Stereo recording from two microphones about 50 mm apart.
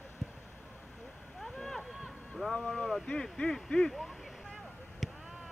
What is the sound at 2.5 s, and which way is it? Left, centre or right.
Speech, centre.